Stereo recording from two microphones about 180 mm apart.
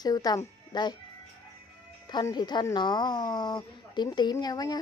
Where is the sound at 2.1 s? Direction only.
25° left (ahead or behind).